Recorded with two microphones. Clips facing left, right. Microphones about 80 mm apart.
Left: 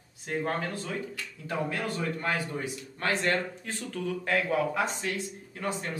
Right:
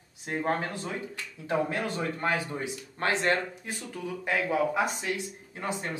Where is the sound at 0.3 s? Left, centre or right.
Right.